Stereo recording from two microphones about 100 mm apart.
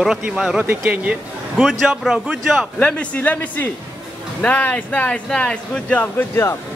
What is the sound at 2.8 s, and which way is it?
Speech, 10° left (ahead or behind).